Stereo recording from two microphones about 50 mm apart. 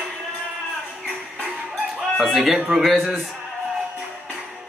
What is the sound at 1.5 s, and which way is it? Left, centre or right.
Music, centre.